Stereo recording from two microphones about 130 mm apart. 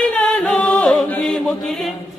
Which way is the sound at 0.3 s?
5° left (ahead or behind).